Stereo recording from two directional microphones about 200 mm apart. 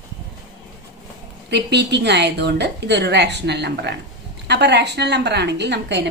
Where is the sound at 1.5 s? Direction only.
60° right (ahead or behind).